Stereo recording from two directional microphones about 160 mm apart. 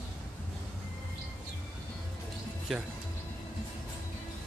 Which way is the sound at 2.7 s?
Centre (ahead or behind).